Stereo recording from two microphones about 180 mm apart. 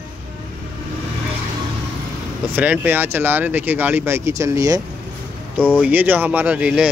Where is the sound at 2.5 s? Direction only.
10° right (ahead or behind).